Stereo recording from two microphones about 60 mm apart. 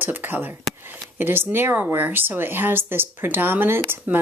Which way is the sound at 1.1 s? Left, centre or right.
Right.